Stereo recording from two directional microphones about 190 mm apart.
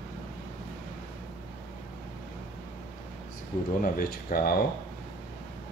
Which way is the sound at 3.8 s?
45° left (ahead or behind).